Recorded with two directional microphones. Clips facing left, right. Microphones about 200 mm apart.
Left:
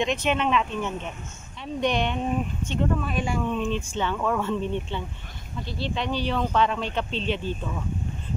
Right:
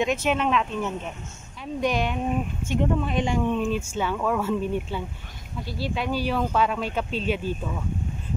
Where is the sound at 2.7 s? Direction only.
20° right (ahead or behind).